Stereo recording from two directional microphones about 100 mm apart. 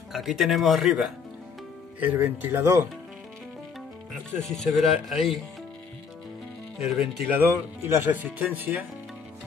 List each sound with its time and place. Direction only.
0.1 s speech: centre (ahead or behind); by 2.7 s 20° right (ahead or behind)
4.4 s speech: 5° left (ahead or behind)
6.8 s speech: 10° right (ahead or behind)
7.2 s speech: 25° right (ahead or behind)